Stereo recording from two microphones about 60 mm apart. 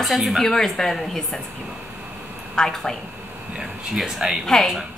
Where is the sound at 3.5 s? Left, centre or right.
Centre.